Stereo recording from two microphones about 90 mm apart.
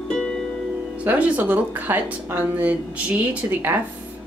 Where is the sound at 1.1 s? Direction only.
15° right (ahead or behind).